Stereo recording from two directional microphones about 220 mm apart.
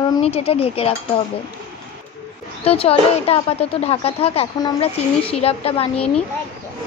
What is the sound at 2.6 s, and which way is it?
A woman's voice, 25° left (ahead or behind).